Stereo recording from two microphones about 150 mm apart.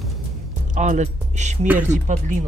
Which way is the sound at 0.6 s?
55° right (ahead or behind).